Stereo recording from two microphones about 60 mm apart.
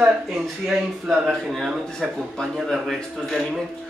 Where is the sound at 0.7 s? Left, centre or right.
Centre.